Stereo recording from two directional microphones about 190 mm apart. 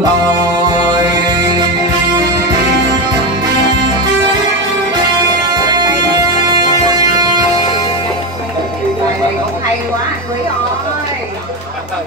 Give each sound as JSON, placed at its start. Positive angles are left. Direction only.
{"t": 5.5, "sound": "music", "side_deg": -20}